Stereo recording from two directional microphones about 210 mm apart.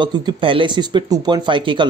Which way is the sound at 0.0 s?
20° right (ahead or behind).